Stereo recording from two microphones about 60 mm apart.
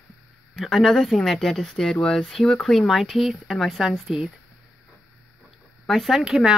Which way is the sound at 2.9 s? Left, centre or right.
Centre.